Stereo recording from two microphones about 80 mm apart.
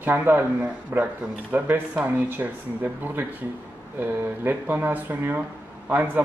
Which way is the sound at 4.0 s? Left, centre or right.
Right.